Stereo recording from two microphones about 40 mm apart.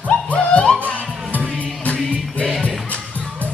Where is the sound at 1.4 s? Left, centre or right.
Right.